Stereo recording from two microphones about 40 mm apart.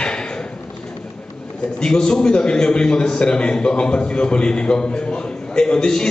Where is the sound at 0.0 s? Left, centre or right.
Left.